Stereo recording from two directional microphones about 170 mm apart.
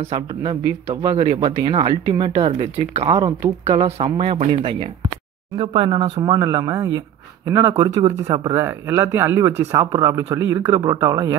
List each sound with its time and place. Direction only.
0.1 s speech: 30° right (ahead or behind)